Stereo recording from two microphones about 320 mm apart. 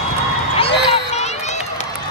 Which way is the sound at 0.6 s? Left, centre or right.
Centre.